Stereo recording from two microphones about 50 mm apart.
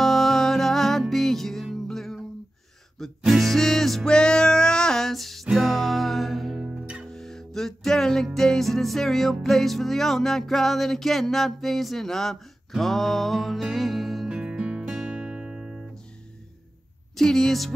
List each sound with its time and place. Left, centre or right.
0.0 s music: centre
3.2 s music: centre
4.1 s music: centre
6.6 s music: centre
7.1 s music: centre
14.3 s music: centre
17.1 s speech: centre